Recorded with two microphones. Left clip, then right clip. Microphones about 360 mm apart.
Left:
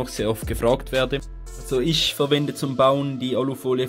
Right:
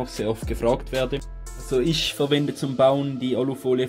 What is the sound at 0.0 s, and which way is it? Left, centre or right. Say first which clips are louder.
Speech: left 2 dB; centre.